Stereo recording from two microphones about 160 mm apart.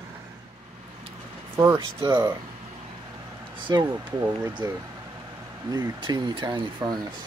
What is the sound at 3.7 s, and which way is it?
Speech, 25° right (ahead or behind).